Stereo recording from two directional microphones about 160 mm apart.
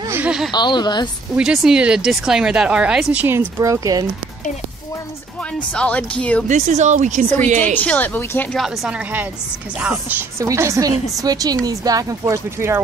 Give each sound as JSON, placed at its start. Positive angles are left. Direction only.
{"t": 0.1, "sound": "a sound", "side_deg": -5}
{"t": 0.5, "sound": "speech", "side_deg": 25}
{"t": 1.3, "sound": "speech", "side_deg": -5}
{"t": 5.8, "sound": "a woman's voice", "side_deg": 10}
{"t": 6.4, "sound": "speech", "side_deg": -50}
{"t": 7.6, "sound": "a woman's voice", "side_deg": 10}
{"t": 8.5, "sound": "a woman's voice", "side_deg": -5}